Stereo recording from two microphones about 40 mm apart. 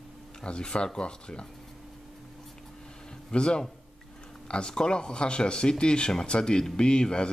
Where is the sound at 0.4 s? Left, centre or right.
Left.